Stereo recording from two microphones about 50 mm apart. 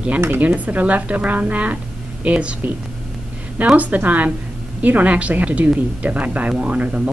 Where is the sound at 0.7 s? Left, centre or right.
Right.